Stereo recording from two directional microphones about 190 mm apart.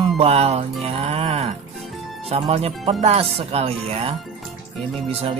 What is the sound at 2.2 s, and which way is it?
Speech, 30° right (ahead or behind).